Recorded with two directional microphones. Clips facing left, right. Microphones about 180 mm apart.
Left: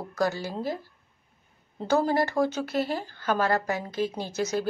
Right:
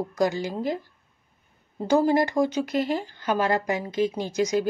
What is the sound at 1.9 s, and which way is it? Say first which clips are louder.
A woman's voice: right 3 dB; 15° right (ahead or behind).